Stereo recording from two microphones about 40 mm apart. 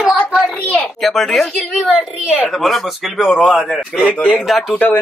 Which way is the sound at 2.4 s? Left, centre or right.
Centre.